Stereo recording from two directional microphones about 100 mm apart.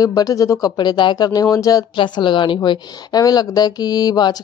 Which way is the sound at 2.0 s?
50° left (ahead or behind).